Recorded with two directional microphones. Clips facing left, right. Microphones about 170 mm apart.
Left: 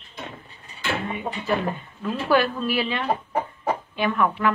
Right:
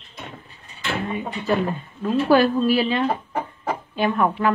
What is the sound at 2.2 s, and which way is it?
Speech, 35° right (ahead or behind).